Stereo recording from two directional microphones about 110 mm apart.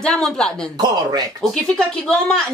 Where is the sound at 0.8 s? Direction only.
35° right (ahead or behind).